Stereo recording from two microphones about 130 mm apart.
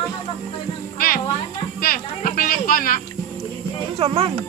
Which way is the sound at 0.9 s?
90° left.